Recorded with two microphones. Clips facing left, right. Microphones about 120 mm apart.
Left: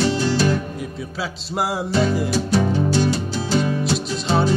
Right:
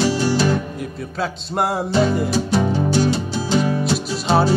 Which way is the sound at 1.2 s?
Centre (ahead or behind).